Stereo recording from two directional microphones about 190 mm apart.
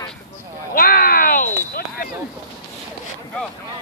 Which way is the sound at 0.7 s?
50° left (ahead or behind).